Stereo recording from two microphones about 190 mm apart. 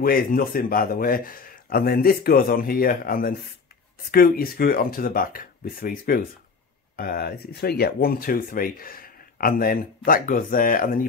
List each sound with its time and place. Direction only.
0.0 s speech: 50° left (ahead or behind)